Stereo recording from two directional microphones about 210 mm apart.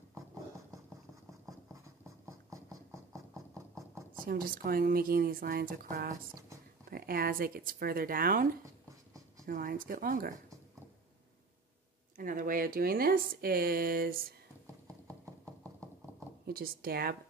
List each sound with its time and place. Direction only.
4.3 s speech: 45° right (ahead or behind)
9.5 s speech: 40° right (ahead or behind)
12.2 s speech: 40° right (ahead or behind)
16.4 s speech: 45° right (ahead or behind)